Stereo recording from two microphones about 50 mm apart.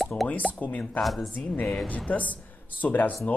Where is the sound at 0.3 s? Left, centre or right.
Left.